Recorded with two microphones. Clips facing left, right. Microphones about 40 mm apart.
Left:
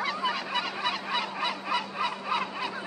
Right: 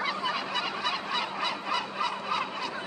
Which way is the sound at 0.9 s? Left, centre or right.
Centre.